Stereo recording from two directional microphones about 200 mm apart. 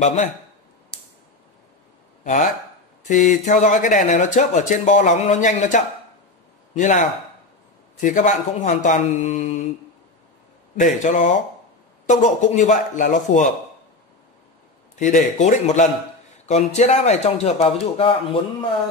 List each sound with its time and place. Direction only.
0.0 s speech: 35° left (ahead or behind)
2.2 s a man's voice: 40° left (ahead or behind)
11.1 s speech: 40° left (ahead or behind)
15.0 s speech: 40° left (ahead or behind)